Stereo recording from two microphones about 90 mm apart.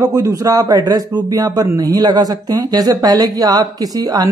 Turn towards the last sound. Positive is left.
turn(degrees=-45)  # may be behind; listen again after turning